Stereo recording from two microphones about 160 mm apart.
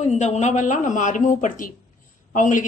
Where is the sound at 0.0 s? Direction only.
45° left (ahead or behind).